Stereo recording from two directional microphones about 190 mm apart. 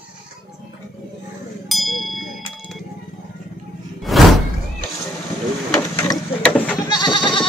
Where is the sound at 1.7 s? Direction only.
Centre (ahead or behind).